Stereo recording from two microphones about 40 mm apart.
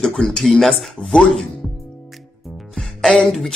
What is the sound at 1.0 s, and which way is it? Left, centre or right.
Chopping, left.